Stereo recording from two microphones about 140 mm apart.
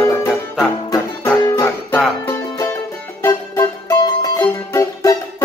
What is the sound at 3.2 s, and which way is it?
Music, 20° left (ahead or behind).